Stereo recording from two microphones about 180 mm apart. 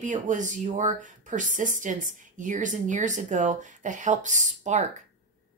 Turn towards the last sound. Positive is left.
turn(degrees=-40)  # may be behind; listen again after turning